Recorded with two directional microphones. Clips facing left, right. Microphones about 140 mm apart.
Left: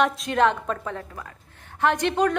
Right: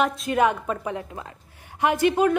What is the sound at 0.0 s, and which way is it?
A woman's voice, 5° right (ahead or behind).